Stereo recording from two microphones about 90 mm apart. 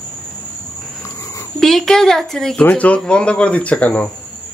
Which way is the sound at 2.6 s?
15° left (ahead or behind).